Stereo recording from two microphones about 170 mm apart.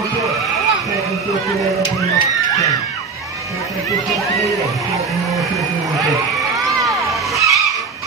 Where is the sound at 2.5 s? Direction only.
20° left (ahead or behind).